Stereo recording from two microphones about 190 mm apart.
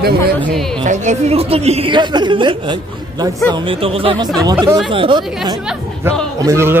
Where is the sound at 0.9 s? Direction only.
35° right (ahead or behind).